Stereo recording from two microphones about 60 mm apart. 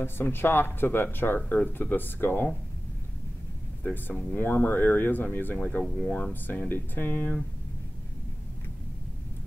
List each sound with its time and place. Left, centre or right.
0.0 s speech: left
3.8 s speech: left